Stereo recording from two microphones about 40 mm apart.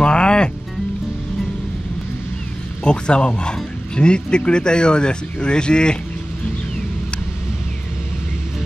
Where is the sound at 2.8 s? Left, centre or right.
Left.